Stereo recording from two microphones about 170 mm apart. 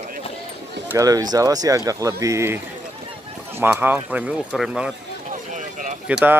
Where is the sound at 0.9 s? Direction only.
20° right (ahead or behind); by 4.9 s 5° right (ahead or behind).